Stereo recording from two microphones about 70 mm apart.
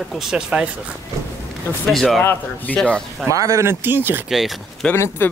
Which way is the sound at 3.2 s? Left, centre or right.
Right.